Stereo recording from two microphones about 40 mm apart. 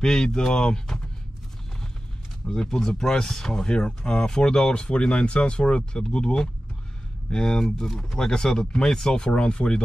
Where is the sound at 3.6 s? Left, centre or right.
Left.